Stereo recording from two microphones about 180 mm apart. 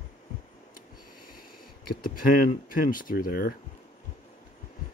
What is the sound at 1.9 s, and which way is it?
Speech, 50° left (ahead or behind).